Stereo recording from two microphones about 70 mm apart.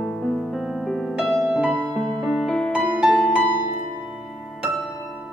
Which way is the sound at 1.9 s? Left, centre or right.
Centre.